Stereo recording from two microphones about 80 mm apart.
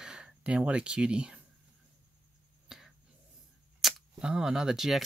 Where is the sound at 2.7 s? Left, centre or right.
Centre.